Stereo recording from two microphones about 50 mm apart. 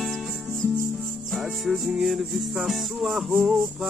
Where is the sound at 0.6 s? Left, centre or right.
Right.